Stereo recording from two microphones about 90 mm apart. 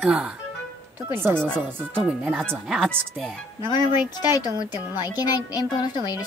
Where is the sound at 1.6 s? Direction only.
10° left (ahead or behind).